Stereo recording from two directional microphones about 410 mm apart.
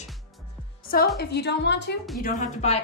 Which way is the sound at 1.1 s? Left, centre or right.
Left.